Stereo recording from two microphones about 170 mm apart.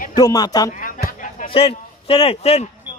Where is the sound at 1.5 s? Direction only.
35° left (ahead or behind).